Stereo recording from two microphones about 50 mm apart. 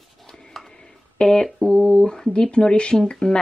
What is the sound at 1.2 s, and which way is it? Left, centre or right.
Speech, centre.